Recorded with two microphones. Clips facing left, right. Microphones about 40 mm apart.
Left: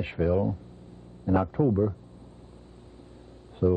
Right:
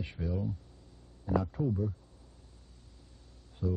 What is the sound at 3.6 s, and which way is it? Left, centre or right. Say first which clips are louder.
Speech: left 11 dB; left.